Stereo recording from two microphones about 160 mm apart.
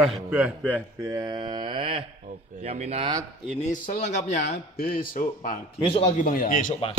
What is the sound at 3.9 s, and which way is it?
Speech, 45° left (ahead or behind).